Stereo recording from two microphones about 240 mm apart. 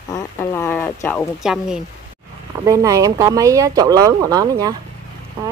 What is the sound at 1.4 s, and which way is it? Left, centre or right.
Speech, centre.